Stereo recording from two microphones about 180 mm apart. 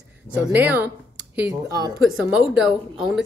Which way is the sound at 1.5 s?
20° right (ahead or behind).